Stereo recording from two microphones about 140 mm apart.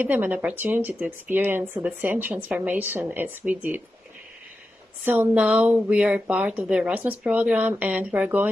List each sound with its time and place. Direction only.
0.0 s speech: 10° right (ahead or behind)
5.0 s speech: 15° right (ahead or behind)